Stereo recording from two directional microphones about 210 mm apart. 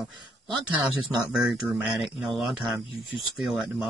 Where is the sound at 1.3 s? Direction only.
Centre (ahead or behind).